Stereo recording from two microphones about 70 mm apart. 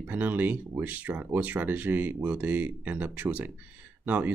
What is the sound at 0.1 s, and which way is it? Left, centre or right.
Speech, right.